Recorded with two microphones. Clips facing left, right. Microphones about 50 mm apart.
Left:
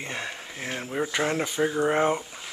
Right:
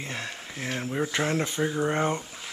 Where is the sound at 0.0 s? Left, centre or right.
Centre.